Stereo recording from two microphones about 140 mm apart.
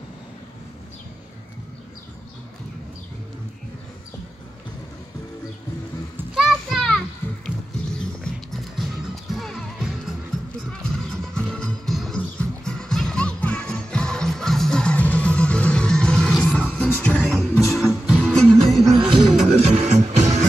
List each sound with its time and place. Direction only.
6.3 s children playing: 5° right (ahead or behind)
8.0 s music: 5° left (ahead or behind)
11.3 s music: 5° left (ahead or behind)
18.9 s music: 35° right (ahead or behind)
19.5 s music: 50° right (ahead or behind)